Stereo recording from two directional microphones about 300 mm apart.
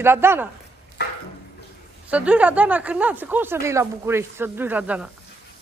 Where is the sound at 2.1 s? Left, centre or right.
Centre.